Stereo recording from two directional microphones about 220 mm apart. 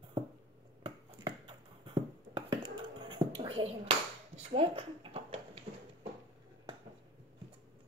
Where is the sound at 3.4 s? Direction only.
25° right (ahead or behind).